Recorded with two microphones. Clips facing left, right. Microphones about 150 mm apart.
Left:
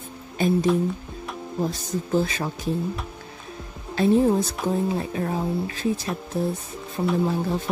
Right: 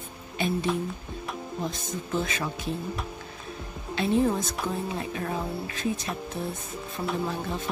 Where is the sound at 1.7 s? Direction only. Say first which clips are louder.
Left 6 dB; 35° left (ahead or behind).